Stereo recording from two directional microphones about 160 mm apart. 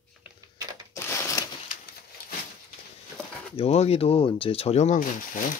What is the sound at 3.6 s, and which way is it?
Speech, 40° left (ahead or behind).